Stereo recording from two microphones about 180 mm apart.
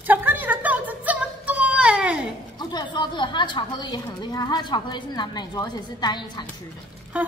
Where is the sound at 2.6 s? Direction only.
25° left (ahead or behind).